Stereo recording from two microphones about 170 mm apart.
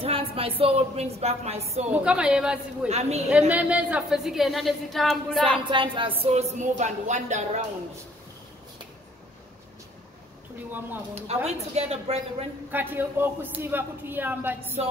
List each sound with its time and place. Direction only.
0.0 s speech: 35° right (ahead or behind)
1.9 s a woman's voice: 5° right (ahead or behind)
2.9 s speech: 40° right (ahead or behind)
3.3 s a woman's voice: 10° right (ahead or behind)
5.7 s speech: 30° right (ahead or behind)
11.1 s speech: 40° right (ahead or behind)
12.7 s speech: 10° right (ahead or behind)